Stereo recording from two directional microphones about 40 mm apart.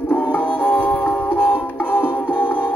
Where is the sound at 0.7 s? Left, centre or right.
Left.